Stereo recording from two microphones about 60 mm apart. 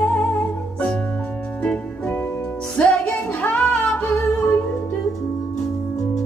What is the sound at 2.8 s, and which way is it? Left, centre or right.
Music, centre.